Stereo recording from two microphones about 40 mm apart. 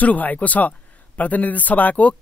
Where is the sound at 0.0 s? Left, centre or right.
Left.